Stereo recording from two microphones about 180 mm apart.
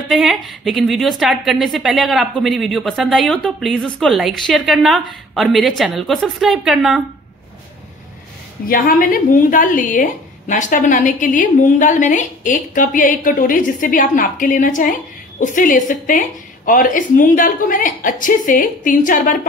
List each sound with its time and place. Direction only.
0.1 s a woman's voice: centre (ahead or behind)
8.6 s a woman's voice: 55° left (ahead or behind)